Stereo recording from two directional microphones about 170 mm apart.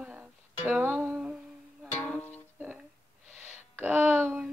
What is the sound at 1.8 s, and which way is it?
Music, 5° left (ahead or behind).